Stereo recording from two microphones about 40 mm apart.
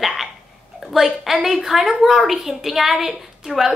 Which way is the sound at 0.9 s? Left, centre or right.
Centre.